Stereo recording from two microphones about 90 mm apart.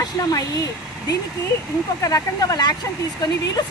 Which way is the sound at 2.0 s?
45° left (ahead or behind).